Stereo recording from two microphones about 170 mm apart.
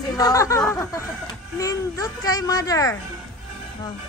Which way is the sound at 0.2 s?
20° left (ahead or behind).